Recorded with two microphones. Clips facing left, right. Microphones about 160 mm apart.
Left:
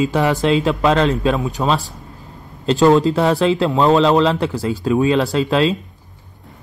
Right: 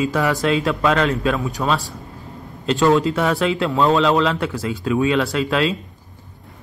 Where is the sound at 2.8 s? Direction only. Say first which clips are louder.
Left 4 dB; 30° left (ahead or behind).